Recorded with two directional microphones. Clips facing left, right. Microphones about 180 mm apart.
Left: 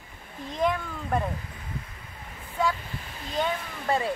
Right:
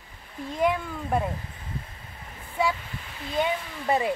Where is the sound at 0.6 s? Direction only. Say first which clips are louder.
Right 2 dB; 10° right (ahead or behind).